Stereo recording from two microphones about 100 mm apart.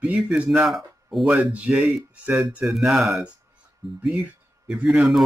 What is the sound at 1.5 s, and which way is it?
Speech, 15° right (ahead or behind).